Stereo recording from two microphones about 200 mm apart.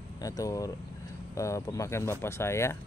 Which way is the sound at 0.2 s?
15° left (ahead or behind).